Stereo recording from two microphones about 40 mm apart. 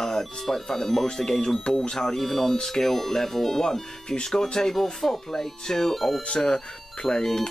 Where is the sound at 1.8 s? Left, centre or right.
Centre.